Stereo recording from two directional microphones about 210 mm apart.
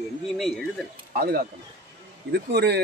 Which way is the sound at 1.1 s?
45° right (ahead or behind).